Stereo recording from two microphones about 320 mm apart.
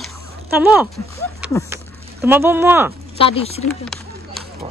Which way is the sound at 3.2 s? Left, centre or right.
Centre.